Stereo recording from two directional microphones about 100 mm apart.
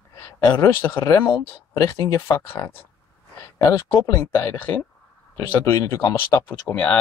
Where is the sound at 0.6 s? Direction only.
25° left (ahead or behind).